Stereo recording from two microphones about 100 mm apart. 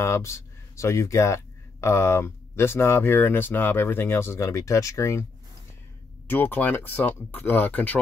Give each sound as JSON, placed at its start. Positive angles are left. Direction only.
{"t": 0.0, "sound": "speech", "side_deg": 25}
{"t": 6.2, "sound": "speech", "side_deg": 20}